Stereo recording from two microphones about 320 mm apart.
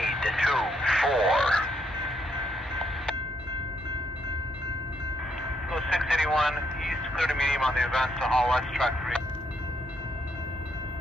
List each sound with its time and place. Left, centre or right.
0.0 s radio: centre
5.7 s vehicle: centre